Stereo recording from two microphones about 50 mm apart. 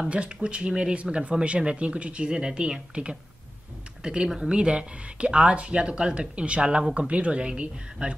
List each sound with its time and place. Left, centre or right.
0.0 s speech: right